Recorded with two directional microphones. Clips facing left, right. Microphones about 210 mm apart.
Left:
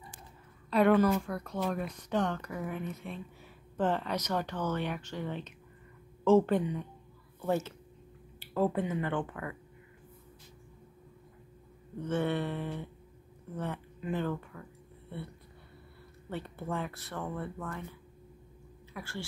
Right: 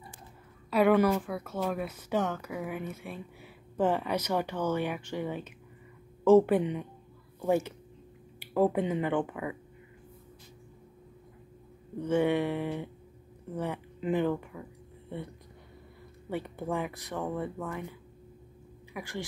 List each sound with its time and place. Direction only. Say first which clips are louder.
0.7 s speech: right 1 dB; 5° right (ahead or behind)
8.4 s a sound: right 4 dB; 15° right (ahead or behind)
8.8 s speech: right 4 dB; 20° right (ahead or behind)
12.0 s speech: right 5 dB; 10° right (ahead or behind)
16.3 s speech: right 4 dB; 15° right (ahead or behind)
18.9 s speech: right 4 dB; 15° right (ahead or behind)